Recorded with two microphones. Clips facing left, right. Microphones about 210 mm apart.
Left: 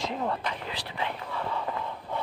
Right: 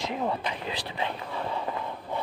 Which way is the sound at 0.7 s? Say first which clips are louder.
Right 2 dB; 20° right (ahead or behind).